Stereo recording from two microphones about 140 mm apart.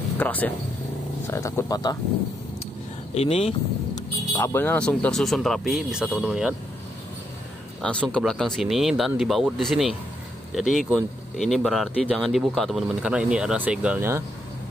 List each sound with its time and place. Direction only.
0.2 s a man's voice: 10° left (ahead or behind); by 2.0 s 30° left (ahead or behind)
3.2 s speech: 45° left (ahead or behind)
4.4 s speech: 15° left (ahead or behind); by 6.5 s 5° right (ahead or behind)
7.8 s a man's voice: 10° left (ahead or behind); by 14.0 s 10° right (ahead or behind)